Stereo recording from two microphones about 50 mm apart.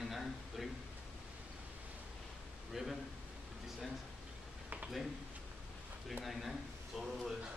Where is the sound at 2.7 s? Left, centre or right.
Centre.